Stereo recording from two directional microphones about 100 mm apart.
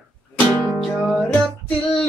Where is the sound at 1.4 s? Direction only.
5° left (ahead or behind).